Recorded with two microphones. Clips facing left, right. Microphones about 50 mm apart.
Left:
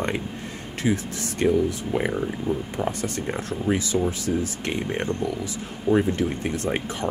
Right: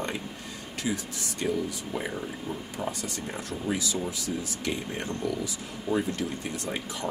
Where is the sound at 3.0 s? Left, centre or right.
Left.